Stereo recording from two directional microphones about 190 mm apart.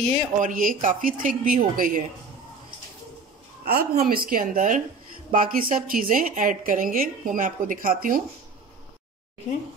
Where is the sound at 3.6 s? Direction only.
55° right (ahead or behind).